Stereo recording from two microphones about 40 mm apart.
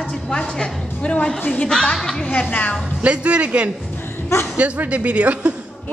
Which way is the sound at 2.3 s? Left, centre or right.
Left.